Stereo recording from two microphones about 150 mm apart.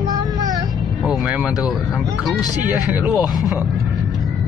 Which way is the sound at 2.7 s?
10° right (ahead or behind).